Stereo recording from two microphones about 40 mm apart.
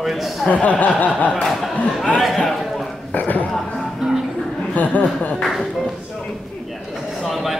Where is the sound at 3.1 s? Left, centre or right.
Left.